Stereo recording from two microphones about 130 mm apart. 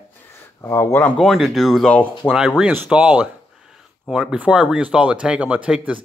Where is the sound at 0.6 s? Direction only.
20° left (ahead or behind).